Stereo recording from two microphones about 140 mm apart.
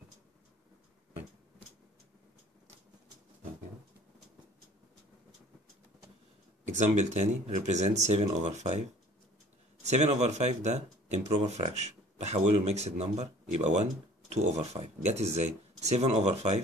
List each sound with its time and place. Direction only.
6.6 s speech: 60° right (ahead or behind)
9.8 s speech: 55° right (ahead or behind)